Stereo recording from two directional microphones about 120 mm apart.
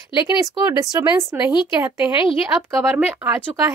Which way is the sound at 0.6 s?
30° right (ahead or behind).